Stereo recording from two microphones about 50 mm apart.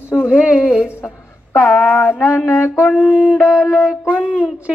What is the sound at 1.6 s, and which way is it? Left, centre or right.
Speech, centre.